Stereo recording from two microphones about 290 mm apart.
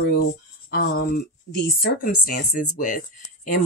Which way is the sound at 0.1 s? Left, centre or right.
Left.